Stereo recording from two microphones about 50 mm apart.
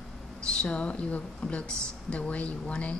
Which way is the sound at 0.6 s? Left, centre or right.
Left.